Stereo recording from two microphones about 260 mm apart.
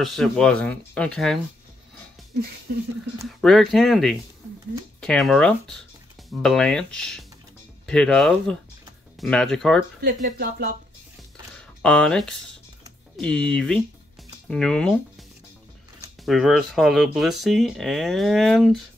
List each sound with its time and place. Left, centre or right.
0.0 s speech: centre
3.3 s speech: centre
10.0 s speech: right
11.8 s speech: centre
16.3 s speech: centre